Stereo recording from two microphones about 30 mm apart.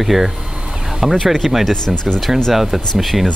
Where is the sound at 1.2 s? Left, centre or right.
Centre.